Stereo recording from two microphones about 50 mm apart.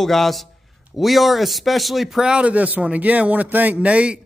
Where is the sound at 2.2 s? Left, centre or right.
Right.